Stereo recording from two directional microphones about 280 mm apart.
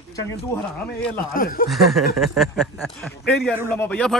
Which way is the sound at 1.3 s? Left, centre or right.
Left.